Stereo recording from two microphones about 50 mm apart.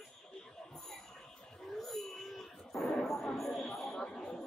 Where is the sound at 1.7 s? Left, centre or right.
Centre.